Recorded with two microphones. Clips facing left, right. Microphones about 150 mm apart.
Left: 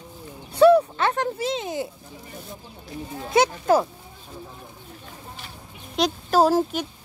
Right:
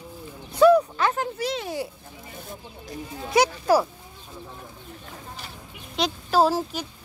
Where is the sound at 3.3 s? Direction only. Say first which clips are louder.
Left 1 dB; 25° left (ahead or behind).